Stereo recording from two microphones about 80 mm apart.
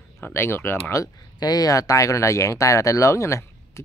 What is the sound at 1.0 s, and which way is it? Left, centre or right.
Speech, left.